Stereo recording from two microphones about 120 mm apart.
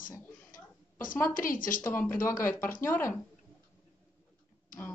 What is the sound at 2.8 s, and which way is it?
Speech, 20° left (ahead or behind).